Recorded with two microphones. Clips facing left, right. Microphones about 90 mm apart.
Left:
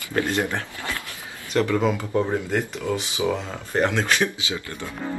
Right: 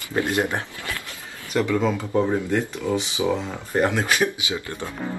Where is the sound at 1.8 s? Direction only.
10° left (ahead or behind).